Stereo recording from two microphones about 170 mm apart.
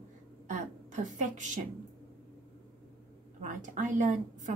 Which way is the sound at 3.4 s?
45° right (ahead or behind).